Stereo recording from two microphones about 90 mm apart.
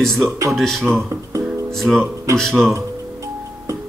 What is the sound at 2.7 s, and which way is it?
Music, 35° right (ahead or behind).